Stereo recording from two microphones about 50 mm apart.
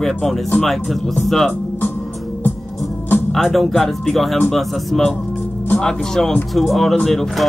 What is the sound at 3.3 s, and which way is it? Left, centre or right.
Speech, centre.